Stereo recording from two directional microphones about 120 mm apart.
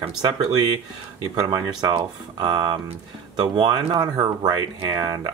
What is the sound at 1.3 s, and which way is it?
Speech, 35° right (ahead or behind).